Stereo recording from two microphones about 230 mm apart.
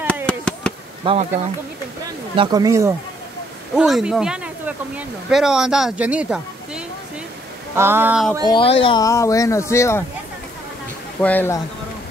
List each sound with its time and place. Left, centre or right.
0.0 s chop: centre
1.0 s speech: right
2.3 s speech: centre
3.7 s speech: centre
8.5 s speech: left
11.1 s speech: centre